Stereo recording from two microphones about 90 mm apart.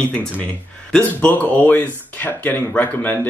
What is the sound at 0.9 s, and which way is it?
Speech, 20° left (ahead or behind).